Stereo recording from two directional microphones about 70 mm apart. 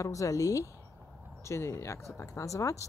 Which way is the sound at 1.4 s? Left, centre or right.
Left.